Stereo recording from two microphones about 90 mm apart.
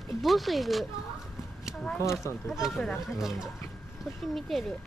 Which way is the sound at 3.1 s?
5° right (ahead or behind).